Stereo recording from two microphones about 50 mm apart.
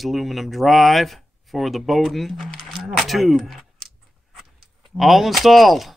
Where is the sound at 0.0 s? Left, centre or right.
Centre.